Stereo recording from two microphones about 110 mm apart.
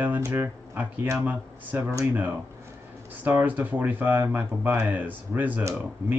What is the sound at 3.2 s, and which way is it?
Speech, 15° right (ahead or behind).